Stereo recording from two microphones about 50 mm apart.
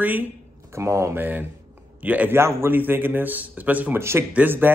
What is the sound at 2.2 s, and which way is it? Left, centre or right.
Speech, right.